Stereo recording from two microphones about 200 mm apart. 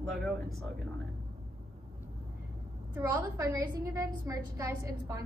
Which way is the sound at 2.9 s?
15° right (ahead or behind).